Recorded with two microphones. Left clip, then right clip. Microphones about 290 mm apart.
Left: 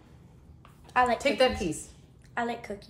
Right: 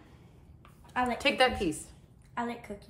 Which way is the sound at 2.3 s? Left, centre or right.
Left.